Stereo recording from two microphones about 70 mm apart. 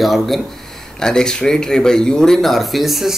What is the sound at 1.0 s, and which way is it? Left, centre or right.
Speech, centre.